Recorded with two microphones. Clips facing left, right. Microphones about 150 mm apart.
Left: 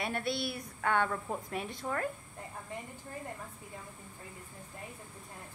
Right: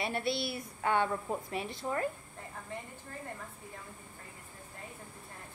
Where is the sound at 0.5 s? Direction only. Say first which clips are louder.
Right 1 dB; 10° right (ahead or behind).